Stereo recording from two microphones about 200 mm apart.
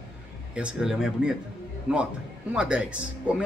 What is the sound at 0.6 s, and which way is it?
Speech, 5° right (ahead or behind).